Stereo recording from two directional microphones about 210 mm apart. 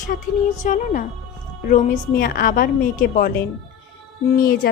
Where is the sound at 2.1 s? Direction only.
45° left (ahead or behind).